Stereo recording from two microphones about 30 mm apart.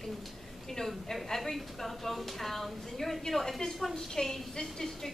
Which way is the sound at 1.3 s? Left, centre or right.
Centre.